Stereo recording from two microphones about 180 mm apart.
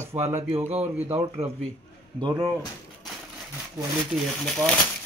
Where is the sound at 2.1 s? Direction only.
25° right (ahead or behind).